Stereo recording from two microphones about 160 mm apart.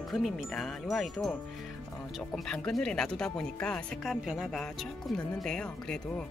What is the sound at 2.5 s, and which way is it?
Wind chime, 5° left (ahead or behind).